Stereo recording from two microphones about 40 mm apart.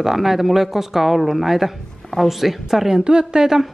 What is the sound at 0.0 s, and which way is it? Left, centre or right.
A woman's voice, centre.